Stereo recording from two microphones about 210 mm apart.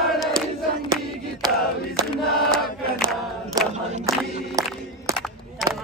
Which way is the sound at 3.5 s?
20° right (ahead or behind).